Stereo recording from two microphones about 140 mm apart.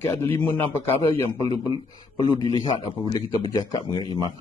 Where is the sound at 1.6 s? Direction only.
35° left (ahead or behind).